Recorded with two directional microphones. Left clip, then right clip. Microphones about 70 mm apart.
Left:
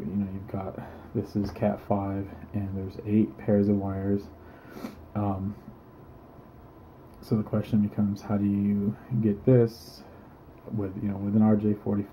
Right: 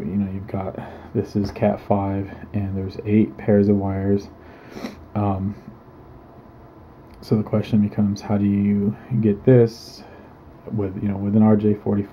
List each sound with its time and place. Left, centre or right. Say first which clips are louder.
0.2 s speech: right 7 dB; right
7.2 s speech: right 7 dB; right
10.8 s speech: right 7 dB; right